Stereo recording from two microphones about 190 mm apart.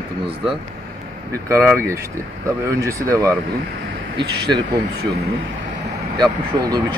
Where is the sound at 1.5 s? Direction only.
15° right (ahead or behind).